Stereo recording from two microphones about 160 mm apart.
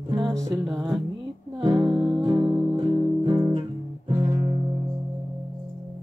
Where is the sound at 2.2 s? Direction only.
30° right (ahead or behind).